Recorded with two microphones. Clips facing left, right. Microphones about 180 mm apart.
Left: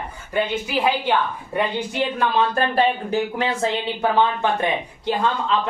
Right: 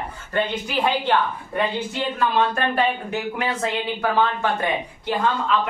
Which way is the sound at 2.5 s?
35° left (ahead or behind).